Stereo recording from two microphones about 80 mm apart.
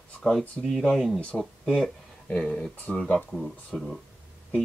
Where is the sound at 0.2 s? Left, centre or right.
Centre.